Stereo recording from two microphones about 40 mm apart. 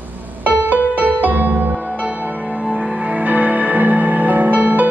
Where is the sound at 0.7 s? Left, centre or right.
Right.